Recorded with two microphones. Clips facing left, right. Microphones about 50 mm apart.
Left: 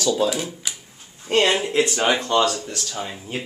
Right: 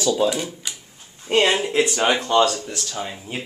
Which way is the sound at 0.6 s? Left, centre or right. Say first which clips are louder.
Left 1 dB; centre.